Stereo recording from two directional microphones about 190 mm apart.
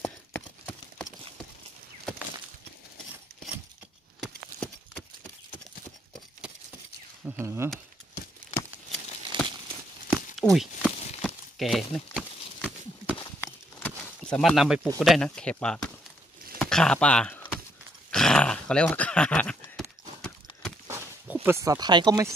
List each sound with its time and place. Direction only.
0.0 s clip-clop: 10° left (ahead or behind)
4.2 s horse: 5° left (ahead or behind)
7.2 s speech: 15° right (ahead or behind)
9.3 s crumpling: 25° right (ahead or behind)
10.0 s a sound: centre (ahead or behind)
13.7 s a sound: 10° left (ahead or behind)
15.0 s speech: centre (ahead or behind)
16.5 s a sound: 5° left (ahead or behind)
18.1 s dog: 5° left (ahead or behind)
20.8 s zipper: 15° right (ahead or behind)